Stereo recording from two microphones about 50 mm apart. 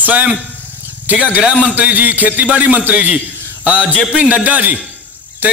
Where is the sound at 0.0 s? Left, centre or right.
Right.